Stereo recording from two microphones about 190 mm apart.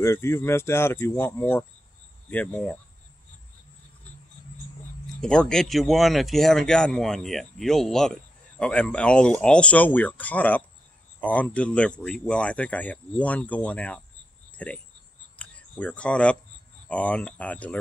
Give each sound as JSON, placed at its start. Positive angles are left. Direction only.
{"t": 0.0, "sound": "speech", "side_deg": 15}
{"t": 5.2, "sound": "speech", "side_deg": 5}
{"t": 15.3, "sound": "a sound", "side_deg": 5}
{"t": 16.8, "sound": "speech", "side_deg": 5}